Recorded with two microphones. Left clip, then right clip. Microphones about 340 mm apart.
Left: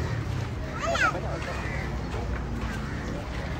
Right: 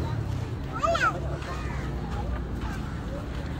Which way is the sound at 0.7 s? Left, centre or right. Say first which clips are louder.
Right 1 dB; right.